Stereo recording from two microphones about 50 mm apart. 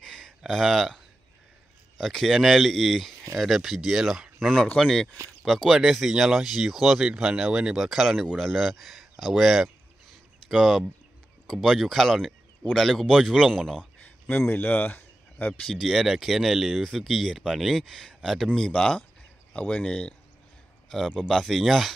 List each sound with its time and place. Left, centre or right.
0.0 s a sound: centre
0.5 s speech: centre
2.0 s speech: centre
4.4 s speech: centre
7.1 s speech: centre
7.7 s speech: centre
14.5 s speech: left
15.6 s speech: centre
18.7 s speech: centre
21.2 s speech: centre